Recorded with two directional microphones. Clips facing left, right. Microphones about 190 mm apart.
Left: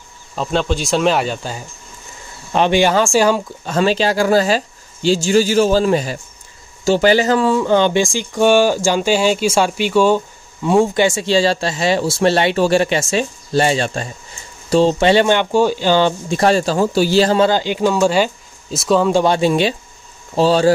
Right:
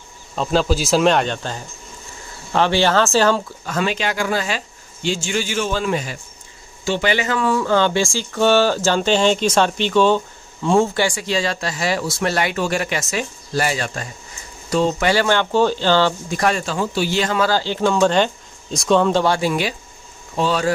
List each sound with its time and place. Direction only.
0.4 s speech: centre (ahead or behind)
3.6 s speech: 30° left (ahead or behind)
7.5 s speech: 20° left (ahead or behind)
11.1 s speech: 25° left (ahead or behind)
17.5 s speech: 15° left (ahead or behind)
19.2 s speech: 25° left (ahead or behind)